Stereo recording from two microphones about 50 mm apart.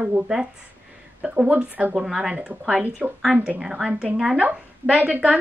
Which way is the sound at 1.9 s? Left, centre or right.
Centre.